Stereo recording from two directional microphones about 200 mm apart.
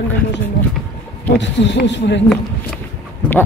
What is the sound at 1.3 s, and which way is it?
Speech, 60° left (ahead or behind).